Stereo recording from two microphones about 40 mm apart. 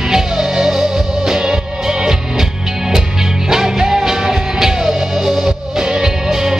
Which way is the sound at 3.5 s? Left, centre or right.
Centre.